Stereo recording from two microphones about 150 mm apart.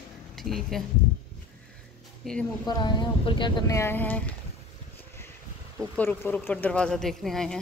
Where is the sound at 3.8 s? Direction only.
15° left (ahead or behind).